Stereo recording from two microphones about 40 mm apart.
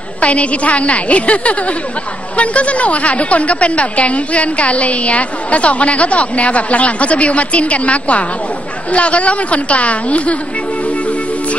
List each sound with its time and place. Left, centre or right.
0.2 s a woman's voice: left